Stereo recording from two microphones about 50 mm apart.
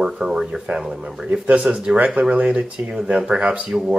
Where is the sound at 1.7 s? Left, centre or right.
Centre.